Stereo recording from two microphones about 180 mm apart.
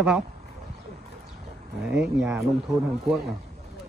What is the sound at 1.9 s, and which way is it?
Speech, 5° right (ahead or behind).